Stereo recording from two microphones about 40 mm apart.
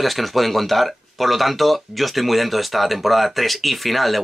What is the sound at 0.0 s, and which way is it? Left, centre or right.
Speech, centre.